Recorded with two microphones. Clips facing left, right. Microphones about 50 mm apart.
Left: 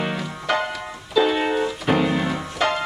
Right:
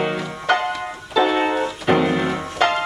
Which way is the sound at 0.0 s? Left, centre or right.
Centre.